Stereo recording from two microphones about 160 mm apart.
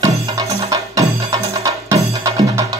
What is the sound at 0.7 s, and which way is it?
Music, 20° right (ahead or behind).